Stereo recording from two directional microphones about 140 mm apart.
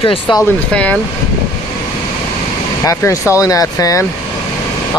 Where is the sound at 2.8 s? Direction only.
25° left (ahead or behind).